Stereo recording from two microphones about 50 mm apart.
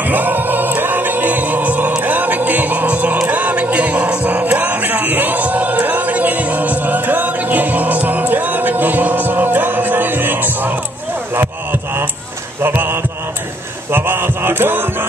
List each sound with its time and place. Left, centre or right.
0.1 s music: right
12.6 s mantra: right
13.9 s music: right